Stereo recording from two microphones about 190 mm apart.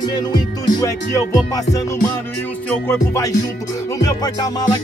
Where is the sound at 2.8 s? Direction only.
15° left (ahead or behind).